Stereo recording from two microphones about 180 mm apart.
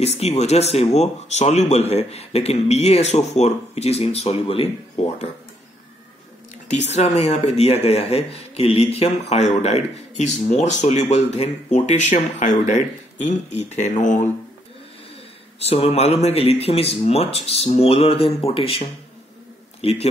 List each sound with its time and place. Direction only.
0.0 s speech: 35° left (ahead or behind)
6.9 s speech: 40° left (ahead or behind)
15.6 s a man's voice: 35° left (ahead or behind)